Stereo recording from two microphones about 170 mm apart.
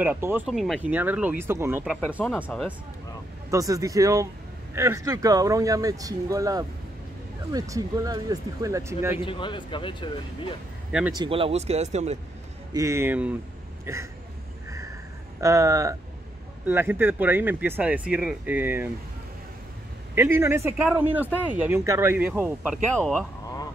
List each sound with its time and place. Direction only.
0.0 s speech: 10° right (ahead or behind)
0.5 s speech: centre (ahead or behind)
2.5 s speech: centre (ahead or behind)
3.4 s speech: 20° right (ahead or behind)
9.2 s speech: 30° left (ahead or behind)
10.9 s speech: 5° right (ahead or behind)
11.1 s speech: 35° right (ahead or behind)
12.7 s speech: 15° right (ahead or behind)
15.4 s speech: 20° right (ahead or behind)
20.2 s speech: 15° right (ahead or behind)